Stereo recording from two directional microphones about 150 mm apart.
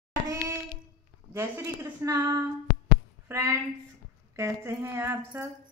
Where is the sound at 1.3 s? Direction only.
15° right (ahead or behind).